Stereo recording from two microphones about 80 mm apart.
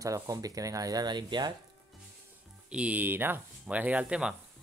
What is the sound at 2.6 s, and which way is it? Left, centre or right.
Speech, centre.